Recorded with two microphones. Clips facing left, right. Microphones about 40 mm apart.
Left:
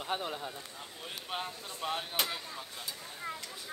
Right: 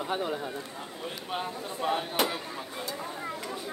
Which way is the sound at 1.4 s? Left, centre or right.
Centre.